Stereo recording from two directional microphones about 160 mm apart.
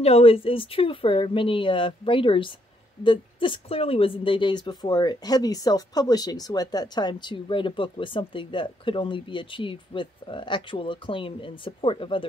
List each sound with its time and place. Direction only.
0.0 s a woman's voice: 40° left (ahead or behind)